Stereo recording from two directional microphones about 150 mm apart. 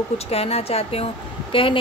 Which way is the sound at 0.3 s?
40° left (ahead or behind).